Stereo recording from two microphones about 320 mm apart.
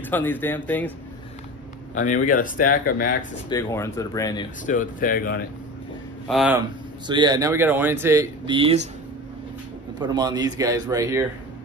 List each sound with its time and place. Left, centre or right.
0.1 s speech: centre
2.0 s speech: left
3.4 s speech: centre
4.6 s speech: left
6.2 s speech: centre
7.1 s speech: centre
9.9 s speech: centre